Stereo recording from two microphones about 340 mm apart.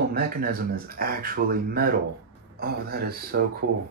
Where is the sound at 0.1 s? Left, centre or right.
Right.